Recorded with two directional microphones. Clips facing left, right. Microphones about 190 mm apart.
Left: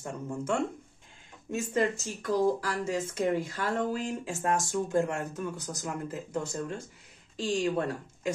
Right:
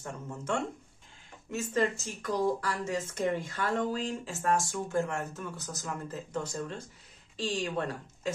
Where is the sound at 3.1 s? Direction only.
15° left (ahead or behind).